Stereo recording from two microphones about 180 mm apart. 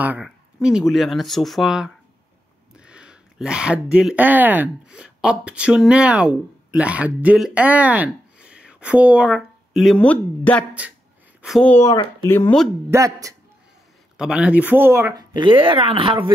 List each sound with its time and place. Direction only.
0.0 s speech: 5° right (ahead or behind)
11.7 s speech: 15° left (ahead or behind)
12.9 s speech: 20° right (ahead or behind)
14.1 s speech: 5° right (ahead or behind)
15.3 s speech: 25° right (ahead or behind)